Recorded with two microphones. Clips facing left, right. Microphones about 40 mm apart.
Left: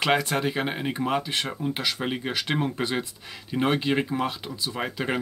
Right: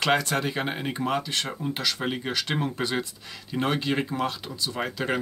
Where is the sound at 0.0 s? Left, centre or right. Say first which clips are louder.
Left 1 dB; centre.